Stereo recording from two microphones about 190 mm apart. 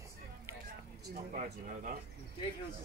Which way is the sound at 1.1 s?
45° right (ahead or behind).